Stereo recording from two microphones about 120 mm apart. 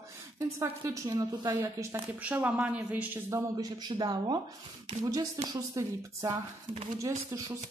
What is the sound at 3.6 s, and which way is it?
Speech, 35° right (ahead or behind).